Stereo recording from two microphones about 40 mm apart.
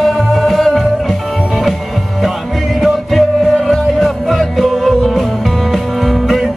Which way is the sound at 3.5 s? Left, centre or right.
Centre.